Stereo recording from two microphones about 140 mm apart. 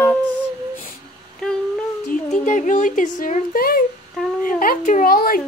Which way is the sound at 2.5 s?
65° left (ahead or behind).